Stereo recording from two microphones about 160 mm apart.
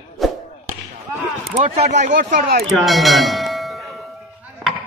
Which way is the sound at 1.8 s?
45° right (ahead or behind).